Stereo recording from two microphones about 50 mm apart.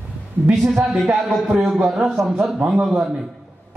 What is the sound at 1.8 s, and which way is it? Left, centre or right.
Speech, centre.